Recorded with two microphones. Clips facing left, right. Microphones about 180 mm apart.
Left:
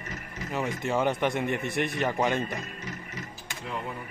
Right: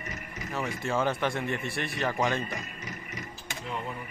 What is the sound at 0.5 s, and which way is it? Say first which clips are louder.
Speech: left 2 dB; 15° left (ahead or behind).